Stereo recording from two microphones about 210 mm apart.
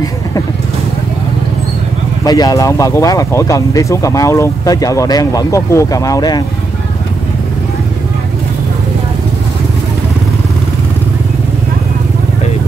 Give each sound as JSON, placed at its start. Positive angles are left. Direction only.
{"t": 2.2, "sound": "speech", "side_deg": 20}